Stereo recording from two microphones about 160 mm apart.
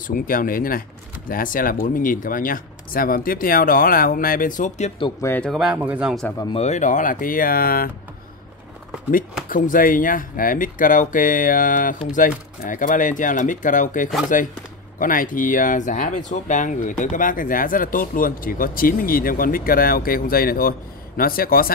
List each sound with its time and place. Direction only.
0.0 s speech: 60° left (ahead or behind)
5.2 s speech: 15° left (ahead or behind)
5.5 s speech: 5° right (ahead or behind)
6.4 s speech: 40° left (ahead or behind); by 7.9 s 65° left (ahead or behind)
9.1 s speech: 60° left (ahead or behind)